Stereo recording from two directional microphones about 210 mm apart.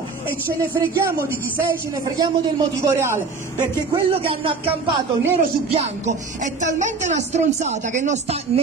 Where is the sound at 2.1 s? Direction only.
20° right (ahead or behind).